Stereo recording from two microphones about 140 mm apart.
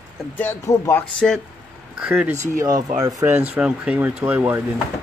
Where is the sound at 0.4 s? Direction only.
15° left (ahead or behind).